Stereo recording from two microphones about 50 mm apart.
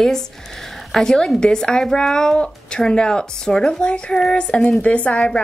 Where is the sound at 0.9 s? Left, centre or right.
Centre.